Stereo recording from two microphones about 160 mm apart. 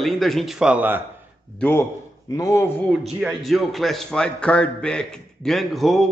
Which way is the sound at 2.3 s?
20° left (ahead or behind).